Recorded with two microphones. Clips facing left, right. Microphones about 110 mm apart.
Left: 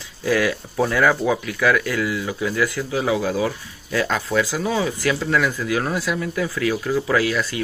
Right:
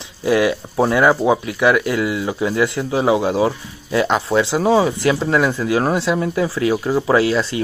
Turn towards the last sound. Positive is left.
turn(degrees=-25)  # may be behind; listen again after turning